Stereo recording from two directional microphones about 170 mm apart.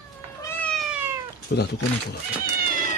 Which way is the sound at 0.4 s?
10° left (ahead or behind).